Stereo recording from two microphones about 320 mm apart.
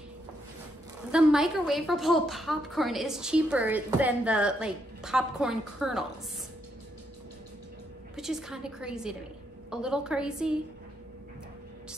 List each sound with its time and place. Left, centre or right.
1.1 s a woman's voice: centre
8.2 s a woman's voice: centre